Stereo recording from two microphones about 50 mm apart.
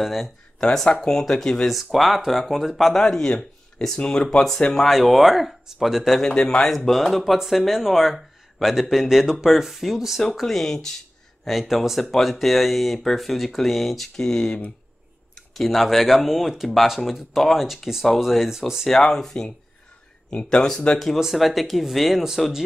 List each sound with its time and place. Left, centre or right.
0.0 s speech: centre
0.6 s speech: centre
1.7 s speech: centre
3.0 s speech: centre
4.7 s speech: centre
6.2 s speech: centre
7.0 s speech: centre
15.5 s speech: centre
18.9 s speech: centre
21.2 s speech: centre